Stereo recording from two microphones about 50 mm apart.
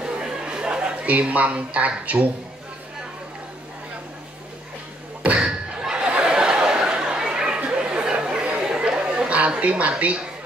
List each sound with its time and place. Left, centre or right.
0.0 s chatter: centre
1.0 s speech: right
5.4 s a sound: centre
7.6 s chatter: right